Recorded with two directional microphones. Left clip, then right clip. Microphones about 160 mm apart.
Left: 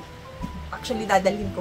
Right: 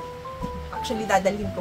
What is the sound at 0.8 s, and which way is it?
Speech, 20° left (ahead or behind).